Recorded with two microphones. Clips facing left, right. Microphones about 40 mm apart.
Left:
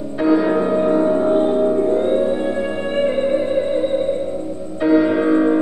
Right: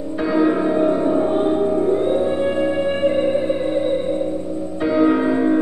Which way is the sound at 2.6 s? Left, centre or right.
Centre.